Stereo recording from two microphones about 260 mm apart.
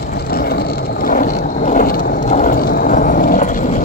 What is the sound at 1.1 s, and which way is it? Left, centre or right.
Vehicle, left.